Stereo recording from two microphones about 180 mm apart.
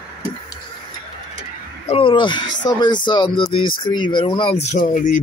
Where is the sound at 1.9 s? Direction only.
30° left (ahead or behind).